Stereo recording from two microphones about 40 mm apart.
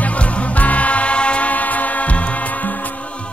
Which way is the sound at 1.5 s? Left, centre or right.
Left.